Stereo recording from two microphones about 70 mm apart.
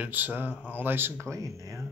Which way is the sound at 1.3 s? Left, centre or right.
Right.